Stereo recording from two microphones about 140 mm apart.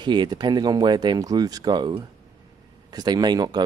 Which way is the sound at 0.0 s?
35° right (ahead or behind).